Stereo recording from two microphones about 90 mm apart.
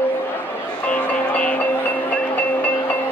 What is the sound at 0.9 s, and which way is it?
Music, 15° left (ahead or behind).